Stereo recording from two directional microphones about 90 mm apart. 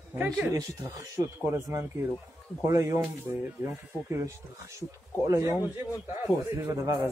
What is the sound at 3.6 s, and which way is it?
Speech, 25° right (ahead or behind).